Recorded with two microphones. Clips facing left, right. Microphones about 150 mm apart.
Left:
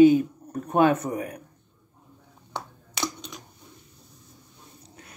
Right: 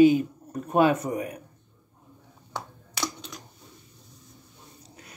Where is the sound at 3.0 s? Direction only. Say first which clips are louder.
Left 1 dB; 20° left (ahead or behind).